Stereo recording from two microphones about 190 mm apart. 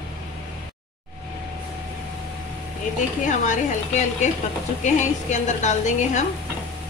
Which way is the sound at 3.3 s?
40° left (ahead or behind).